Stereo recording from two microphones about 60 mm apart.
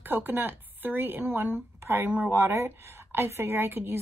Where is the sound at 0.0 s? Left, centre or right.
Right.